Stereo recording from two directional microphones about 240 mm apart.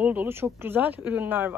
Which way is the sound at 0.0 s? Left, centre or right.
Centre.